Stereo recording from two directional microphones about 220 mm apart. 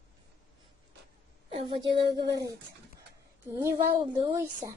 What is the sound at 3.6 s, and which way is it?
Speech, 20° right (ahead or behind).